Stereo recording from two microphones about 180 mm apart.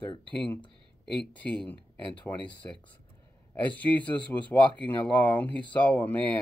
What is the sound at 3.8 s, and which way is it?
Speech, 10° left (ahead or behind).